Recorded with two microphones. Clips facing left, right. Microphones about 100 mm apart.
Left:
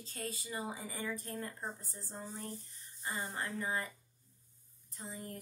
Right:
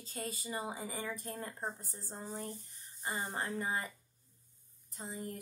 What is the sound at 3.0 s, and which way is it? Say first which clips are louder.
Speech: right 2 dB; 25° right (ahead or behind).